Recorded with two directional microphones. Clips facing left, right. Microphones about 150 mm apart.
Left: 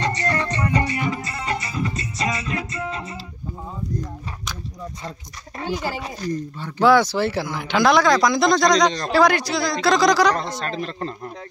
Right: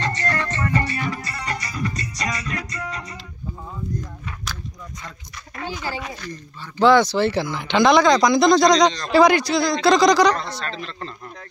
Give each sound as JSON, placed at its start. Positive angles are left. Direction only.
{"t": 0.0, "sound": "music", "side_deg": 20}
{"t": 5.9, "sound": "speech", "side_deg": 35}
{"t": 6.8, "sound": "speech", "side_deg": 10}
{"t": 10.8, "sound": "speech", "side_deg": 40}